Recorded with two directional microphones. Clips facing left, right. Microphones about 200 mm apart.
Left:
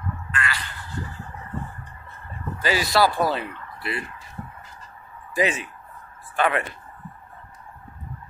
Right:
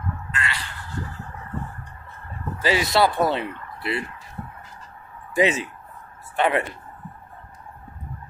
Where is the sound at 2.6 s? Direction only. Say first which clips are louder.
Right 1 dB; 25° right (ahead or behind).